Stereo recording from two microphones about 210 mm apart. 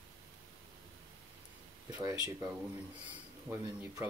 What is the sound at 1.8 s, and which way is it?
Speech, 15° right (ahead or behind).